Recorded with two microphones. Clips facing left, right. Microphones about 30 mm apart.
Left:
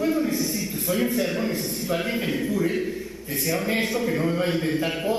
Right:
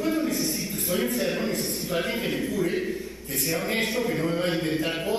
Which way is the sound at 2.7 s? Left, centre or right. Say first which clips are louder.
Left 1 dB; centre.